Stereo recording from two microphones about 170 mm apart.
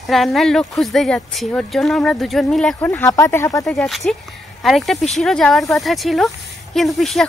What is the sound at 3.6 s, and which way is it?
Speech, centre (ahead or behind).